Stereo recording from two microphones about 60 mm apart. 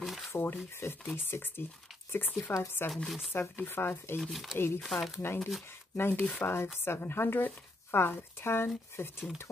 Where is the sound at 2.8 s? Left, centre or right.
Left.